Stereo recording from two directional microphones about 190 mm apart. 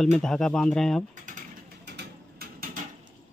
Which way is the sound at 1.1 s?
40° right (ahead or behind).